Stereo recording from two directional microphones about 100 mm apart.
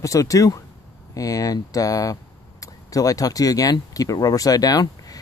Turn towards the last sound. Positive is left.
turn(degrees=40)  # may be behind; listen again after turning